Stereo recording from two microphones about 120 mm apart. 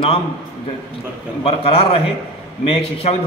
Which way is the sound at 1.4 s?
50° left (ahead or behind).